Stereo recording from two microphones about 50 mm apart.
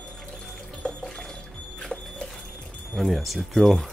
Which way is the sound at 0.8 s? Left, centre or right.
Centre.